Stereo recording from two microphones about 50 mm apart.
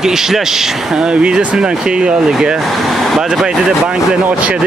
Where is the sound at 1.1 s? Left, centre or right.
Centre.